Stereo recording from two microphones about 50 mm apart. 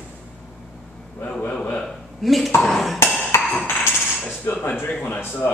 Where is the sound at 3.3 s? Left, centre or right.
Left.